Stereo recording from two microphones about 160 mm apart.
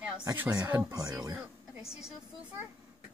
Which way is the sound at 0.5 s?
20° right (ahead or behind).